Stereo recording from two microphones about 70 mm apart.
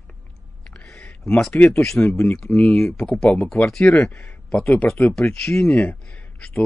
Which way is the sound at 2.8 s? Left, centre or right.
Centre.